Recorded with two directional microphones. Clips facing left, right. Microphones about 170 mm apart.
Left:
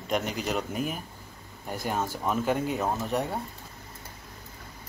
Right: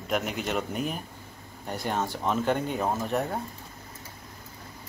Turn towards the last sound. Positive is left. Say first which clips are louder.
# right 1 dB
turn(degrees=0)  # may be behind; listen again after turning